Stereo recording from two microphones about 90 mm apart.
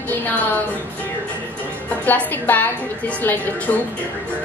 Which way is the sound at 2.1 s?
20° left (ahead or behind).